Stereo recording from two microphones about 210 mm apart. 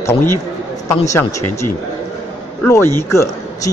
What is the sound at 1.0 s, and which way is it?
Speech, 15° left (ahead or behind).